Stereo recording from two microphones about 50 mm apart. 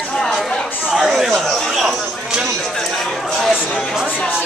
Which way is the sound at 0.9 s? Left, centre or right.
Centre.